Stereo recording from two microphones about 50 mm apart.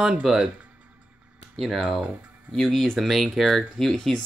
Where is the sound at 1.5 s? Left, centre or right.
Centre.